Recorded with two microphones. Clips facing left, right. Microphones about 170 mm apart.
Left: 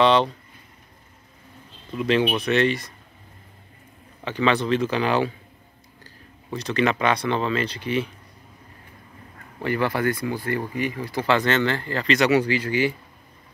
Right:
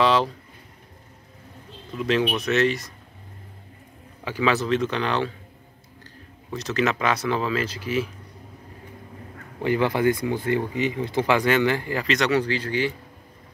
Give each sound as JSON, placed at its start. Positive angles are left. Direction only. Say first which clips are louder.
{"t": 0.0, "sound": "a sound", "louder": "left 2 dB", "side_deg": -5}
{"t": 2.0, "sound": "speech", "louder": "left 2 dB", "side_deg": 0}
{"t": 4.2, "sound": "speech", "louder": "left 1 dB", "side_deg": -5}
{"t": 6.5, "sound": "speech", "louder": "left 1 dB", "side_deg": 0}
{"t": 9.6, "sound": "speech", "louder": "right 2 dB", "side_deg": -15}
{"t": 12.1, "sound": "speech", "louder": "left 3 dB", "side_deg": 10}